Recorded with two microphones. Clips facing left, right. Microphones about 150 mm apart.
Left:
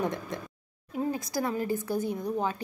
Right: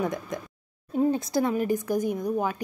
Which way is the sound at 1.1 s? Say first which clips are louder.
Right 5 dB; 25° right (ahead or behind).